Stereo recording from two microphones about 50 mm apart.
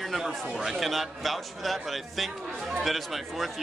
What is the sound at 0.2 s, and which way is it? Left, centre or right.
Speech, centre.